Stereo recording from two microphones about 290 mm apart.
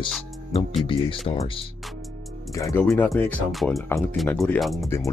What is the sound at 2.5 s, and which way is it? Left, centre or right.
Speech, centre.